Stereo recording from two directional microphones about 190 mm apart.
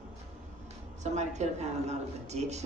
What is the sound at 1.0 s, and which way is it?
A woman's voice, 35° right (ahead or behind).